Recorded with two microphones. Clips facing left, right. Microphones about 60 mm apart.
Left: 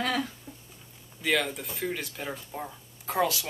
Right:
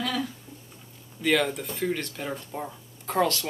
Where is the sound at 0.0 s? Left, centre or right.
Left.